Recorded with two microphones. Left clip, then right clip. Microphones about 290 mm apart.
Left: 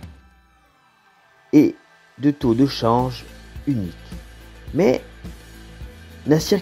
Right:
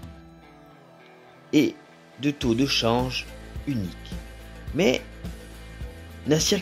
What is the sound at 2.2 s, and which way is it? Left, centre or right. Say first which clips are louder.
Speech: left 6 dB; centre.